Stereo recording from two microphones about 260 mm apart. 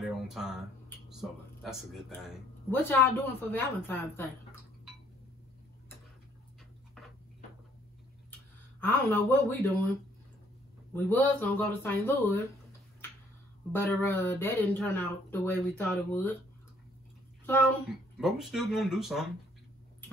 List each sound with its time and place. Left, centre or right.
0.0 s speech: centre
8.8 s speech: centre
10.9 s speech: centre
13.7 s speech: centre
17.5 s speech: centre